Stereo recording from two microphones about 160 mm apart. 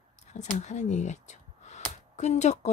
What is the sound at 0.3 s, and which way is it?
Speech, 45° left (ahead or behind).